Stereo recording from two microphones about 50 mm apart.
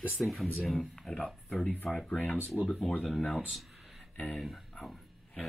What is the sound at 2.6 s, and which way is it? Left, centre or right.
Speech, centre.